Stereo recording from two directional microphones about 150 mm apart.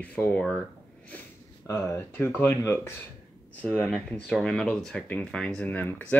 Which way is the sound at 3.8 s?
Centre (ahead or behind).